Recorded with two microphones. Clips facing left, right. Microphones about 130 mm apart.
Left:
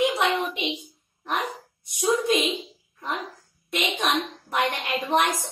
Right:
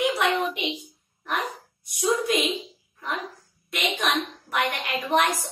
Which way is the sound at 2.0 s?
20° left (ahead or behind).